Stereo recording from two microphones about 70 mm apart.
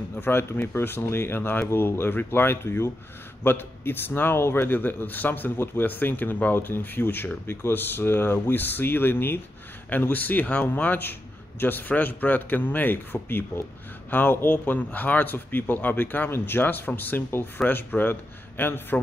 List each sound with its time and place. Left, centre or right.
0.2 s a man's voice: left